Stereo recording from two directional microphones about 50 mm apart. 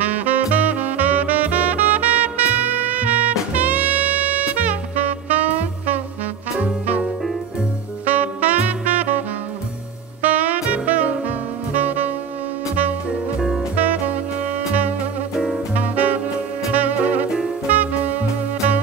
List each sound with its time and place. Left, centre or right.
0.1 s music: right
8.0 s music: right
10.2 s saxophone: right
13.7 s saxophone: right
15.7 s jazz: right
16.7 s music: right